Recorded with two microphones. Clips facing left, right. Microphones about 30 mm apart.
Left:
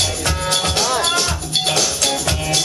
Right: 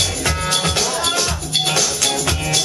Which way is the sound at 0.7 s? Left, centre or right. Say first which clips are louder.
Left 2 dB; centre.